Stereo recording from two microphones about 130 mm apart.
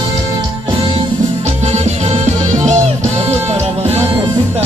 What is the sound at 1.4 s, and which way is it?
Music, 60° right (ahead or behind).